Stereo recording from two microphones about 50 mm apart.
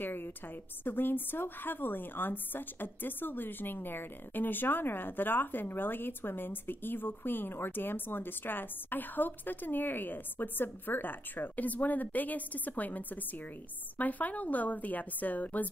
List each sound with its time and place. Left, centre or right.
0.0 s a woman's voice: left